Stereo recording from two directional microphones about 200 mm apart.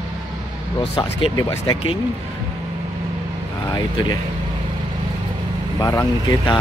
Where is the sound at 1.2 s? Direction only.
25° left (ahead or behind).